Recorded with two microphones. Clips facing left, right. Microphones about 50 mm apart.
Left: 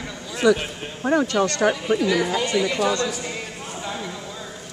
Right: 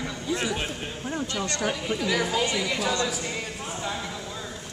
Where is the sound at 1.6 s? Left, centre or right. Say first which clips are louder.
Left 7 dB; left.